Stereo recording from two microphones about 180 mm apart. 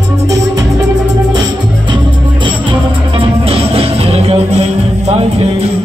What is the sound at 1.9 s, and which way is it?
Music, 25° right (ahead or behind).